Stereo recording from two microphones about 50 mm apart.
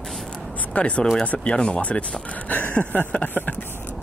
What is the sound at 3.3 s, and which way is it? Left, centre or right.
Speech, left.